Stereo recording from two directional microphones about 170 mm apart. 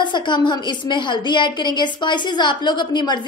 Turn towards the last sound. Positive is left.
turn(degrees=25)  # may be behind; listen again after turning